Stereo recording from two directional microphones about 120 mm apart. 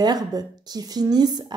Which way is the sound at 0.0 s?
35° right (ahead or behind).